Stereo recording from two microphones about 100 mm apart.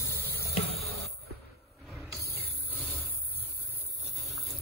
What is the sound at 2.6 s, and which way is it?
Vehicle, 20° left (ahead or behind).